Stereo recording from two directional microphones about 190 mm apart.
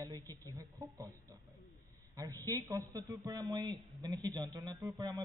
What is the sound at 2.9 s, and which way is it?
A man's voice, 20° right (ahead or behind).